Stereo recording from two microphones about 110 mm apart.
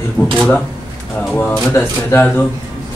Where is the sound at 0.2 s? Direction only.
10° left (ahead or behind).